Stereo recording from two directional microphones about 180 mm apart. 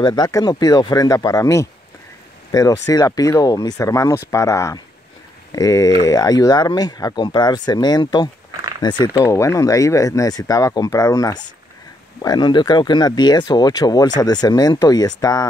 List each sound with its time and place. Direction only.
0.0 s speech: 20° left (ahead or behind)